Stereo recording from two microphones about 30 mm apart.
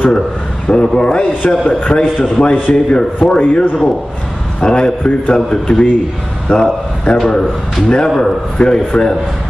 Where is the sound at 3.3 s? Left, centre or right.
Left.